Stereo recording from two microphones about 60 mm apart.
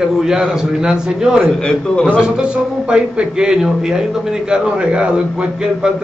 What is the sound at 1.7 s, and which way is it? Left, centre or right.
Speech, centre.